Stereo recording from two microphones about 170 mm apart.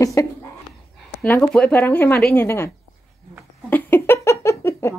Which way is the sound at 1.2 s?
15° left (ahead or behind).